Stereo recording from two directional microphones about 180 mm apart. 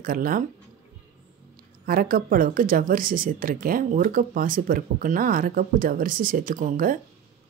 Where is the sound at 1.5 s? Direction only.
55° right (ahead or behind).